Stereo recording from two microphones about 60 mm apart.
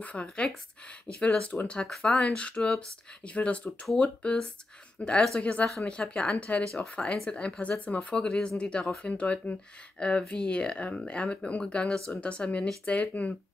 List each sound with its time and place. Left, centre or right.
0.0 s speech: left
1.9 s speech: centre